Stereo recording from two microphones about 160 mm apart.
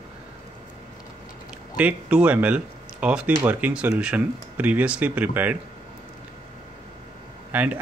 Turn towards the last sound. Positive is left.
turn(degrees=-10)  # may be behind; listen again after turning